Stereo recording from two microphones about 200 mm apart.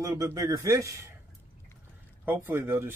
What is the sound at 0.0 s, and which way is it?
Speech, 15° right (ahead or behind).